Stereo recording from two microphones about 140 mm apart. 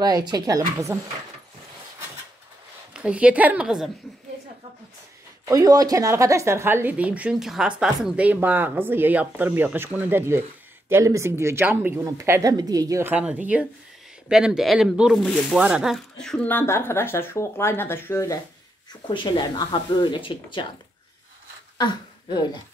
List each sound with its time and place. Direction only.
0.0 s speech: 30° right (ahead or behind)
2.9 s a woman's voice: 10° right (ahead or behind)
5.4 s a woman's voice: 25° right (ahead or behind)
13.0 s a woman's voice: 10° right (ahead or behind); by 18.4 s 20° left (ahead or behind)
19.0 s speech: 35° left (ahead or behind)
21.7 s speech: 30° left (ahead or behind)